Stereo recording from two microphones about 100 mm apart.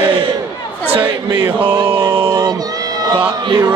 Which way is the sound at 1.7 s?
55° right (ahead or behind).